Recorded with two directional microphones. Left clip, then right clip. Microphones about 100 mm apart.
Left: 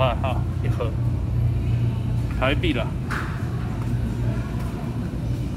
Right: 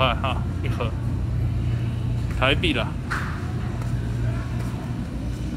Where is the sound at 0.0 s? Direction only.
20° left (ahead or behind).